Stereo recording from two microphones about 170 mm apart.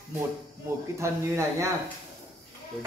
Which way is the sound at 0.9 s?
15° right (ahead or behind).